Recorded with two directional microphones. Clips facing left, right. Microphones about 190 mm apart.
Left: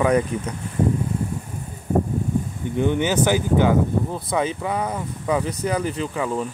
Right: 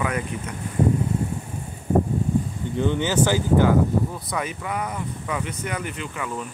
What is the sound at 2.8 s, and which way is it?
Speech, 15° left (ahead or behind).